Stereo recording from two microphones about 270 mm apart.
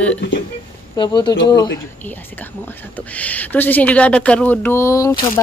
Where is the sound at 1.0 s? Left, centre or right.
Centre.